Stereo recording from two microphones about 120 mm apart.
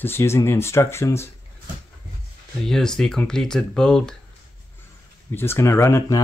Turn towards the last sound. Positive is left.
turn(degrees=25)  # may be behind; listen again after turning